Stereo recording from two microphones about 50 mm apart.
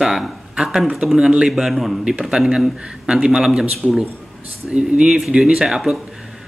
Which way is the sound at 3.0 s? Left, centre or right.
Centre.